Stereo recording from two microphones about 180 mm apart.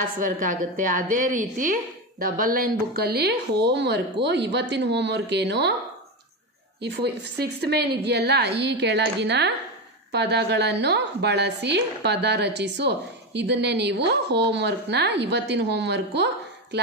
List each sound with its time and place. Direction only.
0.0 s a woman's voice: 45° right (ahead or behind); by 5.8 s 70° right (ahead or behind)
6.8 s a woman's voice: 65° right (ahead or behind)